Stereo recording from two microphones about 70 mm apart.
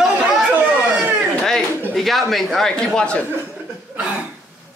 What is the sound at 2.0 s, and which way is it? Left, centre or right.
Speech, centre.